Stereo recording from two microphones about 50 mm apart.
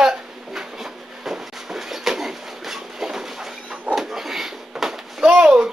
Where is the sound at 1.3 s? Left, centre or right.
Centre.